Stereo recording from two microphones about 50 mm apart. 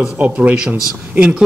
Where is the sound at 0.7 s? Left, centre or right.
Right.